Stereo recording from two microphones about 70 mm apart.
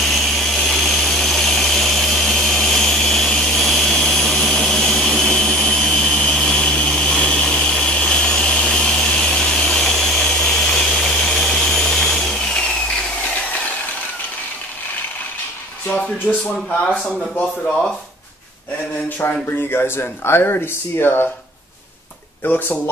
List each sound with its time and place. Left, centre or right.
0.0 s a sound: centre
19.2 s speech: left
22.4 s speech: left